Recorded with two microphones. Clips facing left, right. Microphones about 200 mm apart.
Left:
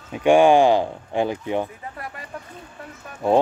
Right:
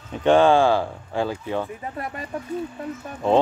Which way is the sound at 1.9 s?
25° right (ahead or behind).